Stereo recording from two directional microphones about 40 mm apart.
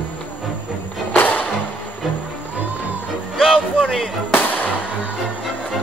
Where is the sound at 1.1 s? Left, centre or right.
Left.